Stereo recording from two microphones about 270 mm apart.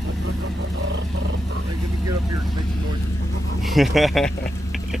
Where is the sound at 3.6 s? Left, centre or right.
Centre.